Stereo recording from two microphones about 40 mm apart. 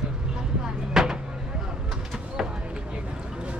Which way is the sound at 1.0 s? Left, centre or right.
Centre.